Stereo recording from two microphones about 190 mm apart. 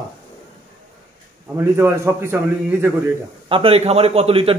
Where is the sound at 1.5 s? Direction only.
15° right (ahead or behind).